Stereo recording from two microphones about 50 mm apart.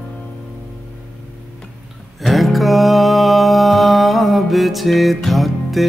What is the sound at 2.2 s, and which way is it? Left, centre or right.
Music, centre.